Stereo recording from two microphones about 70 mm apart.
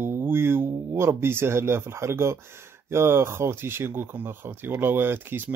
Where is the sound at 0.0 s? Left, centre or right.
Right.